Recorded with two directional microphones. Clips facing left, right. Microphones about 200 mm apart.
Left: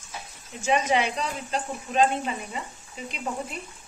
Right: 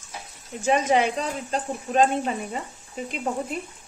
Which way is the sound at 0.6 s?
45° right (ahead or behind).